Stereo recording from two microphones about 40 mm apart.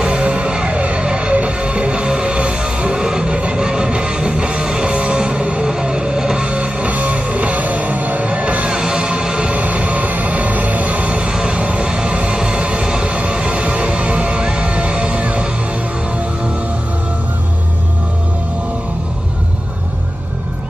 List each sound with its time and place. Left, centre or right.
0.0 s music: right
6.5 s music: right
8.6 s music: centre
9.5 s music: right